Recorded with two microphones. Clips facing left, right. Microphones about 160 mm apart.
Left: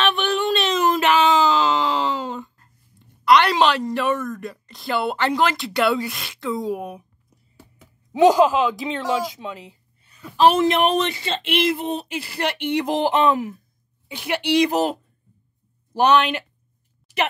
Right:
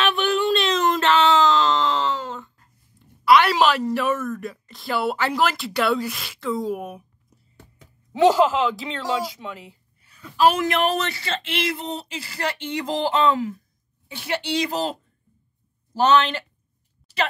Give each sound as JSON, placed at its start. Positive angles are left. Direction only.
{"t": 0.0, "sound": "a sound", "side_deg": 0}
{"t": 3.3, "sound": "a woman's voice", "side_deg": -5}
{"t": 7.5, "sound": "speech", "side_deg": 10}
{"t": 16.0, "sound": "speech", "side_deg": 15}